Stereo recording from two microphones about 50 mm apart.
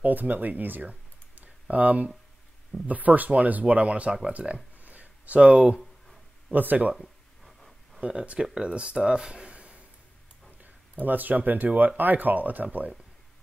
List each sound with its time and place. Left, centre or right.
0.0 s speech: right
4.7 s a sound: right
6.5 s speech: right
7.0 s a sound: centre
8.5 s speech: centre
11.1 s speech: right